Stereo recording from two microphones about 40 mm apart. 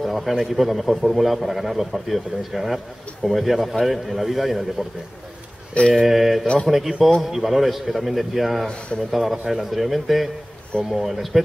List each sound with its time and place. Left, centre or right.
0.0 s speech: centre
5.9 s speech: centre
8.6 s speech: left
9.1 s speech: centre